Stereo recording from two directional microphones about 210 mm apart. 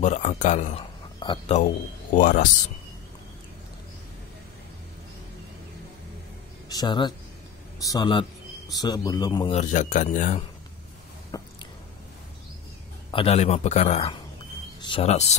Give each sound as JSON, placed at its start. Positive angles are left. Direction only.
{"t": 0.0, "sound": "a man's voice", "side_deg": 35}
{"t": 1.2, "sound": "a man's voice", "side_deg": 20}
{"t": 2.1, "sound": "a man's voice", "side_deg": 40}
{"t": 6.7, "sound": "a man's voice", "side_deg": 20}
{"t": 9.5, "sound": "a man's voice", "side_deg": 35}
{"t": 11.3, "sound": "squish", "side_deg": 20}
{"t": 13.1, "sound": "a man's voice", "side_deg": 25}